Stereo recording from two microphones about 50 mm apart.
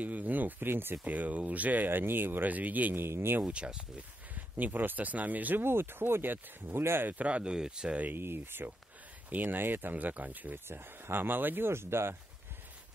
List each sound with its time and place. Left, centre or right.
0.0 s speech: right
1.0 s speech: right
1.9 s speech: right
3.0 s speech: right
3.4 s speech: centre
4.4 s speech: right
5.6 s speech: right
7.1 s speech: right
8.0 s speech: right
10.7 s speech: right